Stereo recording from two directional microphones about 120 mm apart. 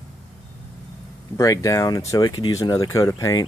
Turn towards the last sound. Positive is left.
turn(degrees=30)  # may be behind; listen again after turning